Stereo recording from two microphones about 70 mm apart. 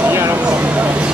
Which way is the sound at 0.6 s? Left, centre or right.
Centre.